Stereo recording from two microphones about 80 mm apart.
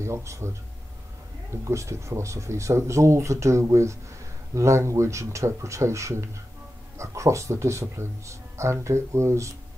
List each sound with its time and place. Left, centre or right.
0.0 s speech: right